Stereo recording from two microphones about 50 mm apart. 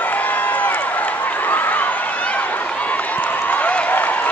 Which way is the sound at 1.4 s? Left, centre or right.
Left.